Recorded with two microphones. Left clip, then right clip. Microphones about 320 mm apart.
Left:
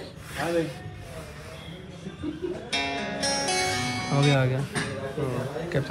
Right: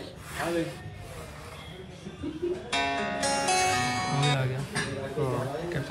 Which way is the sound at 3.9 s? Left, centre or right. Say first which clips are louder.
Right 1 dB; centre.